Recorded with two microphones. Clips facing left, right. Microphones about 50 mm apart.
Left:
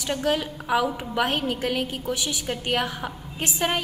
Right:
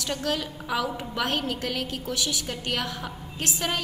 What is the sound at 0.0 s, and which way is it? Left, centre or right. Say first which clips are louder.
A woman's voice: left 4 dB; centre.